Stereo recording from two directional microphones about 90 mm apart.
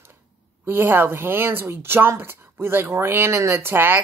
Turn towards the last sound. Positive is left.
turn(degrees=-25)  # may be behind; listen again after turning